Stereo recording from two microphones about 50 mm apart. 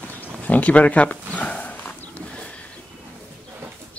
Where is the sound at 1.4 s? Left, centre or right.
Left.